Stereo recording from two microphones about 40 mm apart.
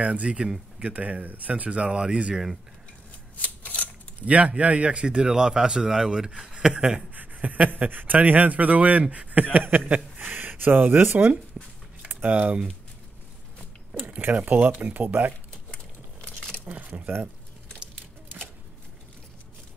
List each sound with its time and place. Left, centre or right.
0.0 s speech: right
1.6 s a man's voice: right
2.3 s speech: centre
3.3 s shuffling cards: left
4.2 s a man's voice: right; by 7.0 s centre
7.2 s speech: right
11.6 s speech: right
12.2 s speech: right
14.3 s speech: right
15.7 s a sound: left
16.6 s speech: right